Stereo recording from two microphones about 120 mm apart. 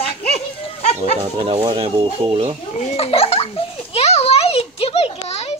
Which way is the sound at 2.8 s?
55° left (ahead or behind).